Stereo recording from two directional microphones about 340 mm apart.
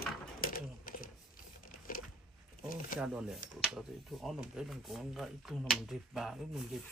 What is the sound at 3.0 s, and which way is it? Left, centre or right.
Speech, centre.